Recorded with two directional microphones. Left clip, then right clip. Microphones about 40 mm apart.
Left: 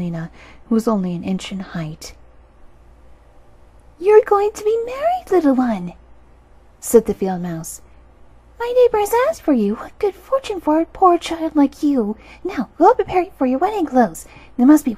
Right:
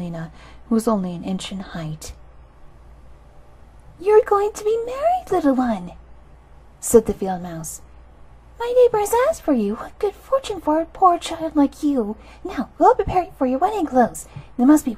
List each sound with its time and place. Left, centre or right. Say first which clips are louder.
0.0 s speech: left 3 dB; right
4.0 s speech: left 3 dB; right
8.5 s a woman's voice: left 1 dB; right
9.2 s a woman's voice: left 2 dB; centre
9.8 s a woman's voice: left 3 dB; right